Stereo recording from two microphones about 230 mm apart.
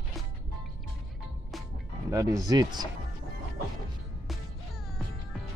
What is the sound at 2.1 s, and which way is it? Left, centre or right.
Speech, centre.